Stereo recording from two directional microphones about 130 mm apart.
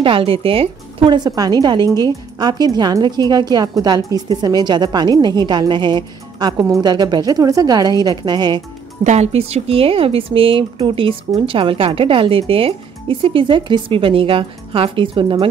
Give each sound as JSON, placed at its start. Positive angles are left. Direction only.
{"t": 0.0, "sound": "speech", "side_deg": -45}
{"t": 9.0, "sound": "speech", "side_deg": -60}